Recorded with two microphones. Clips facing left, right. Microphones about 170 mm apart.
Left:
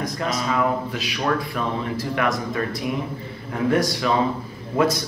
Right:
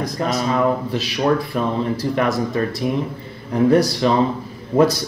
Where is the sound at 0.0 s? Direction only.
35° right (ahead or behind).